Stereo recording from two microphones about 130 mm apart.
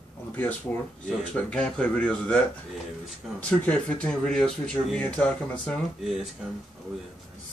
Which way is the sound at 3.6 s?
10° left (ahead or behind).